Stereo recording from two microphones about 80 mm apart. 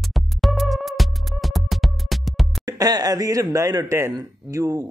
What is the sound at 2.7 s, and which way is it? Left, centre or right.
Speech, right.